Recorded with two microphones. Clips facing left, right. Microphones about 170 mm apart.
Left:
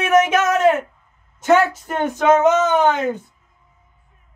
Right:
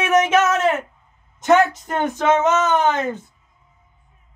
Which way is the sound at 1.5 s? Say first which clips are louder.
Even; 10° left (ahead or behind).